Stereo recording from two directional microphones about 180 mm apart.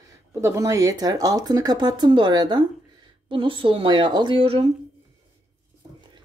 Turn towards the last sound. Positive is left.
turn(degrees=-30)  # may be behind; listen again after turning